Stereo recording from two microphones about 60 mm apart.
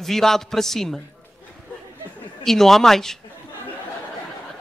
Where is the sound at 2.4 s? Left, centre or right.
Centre.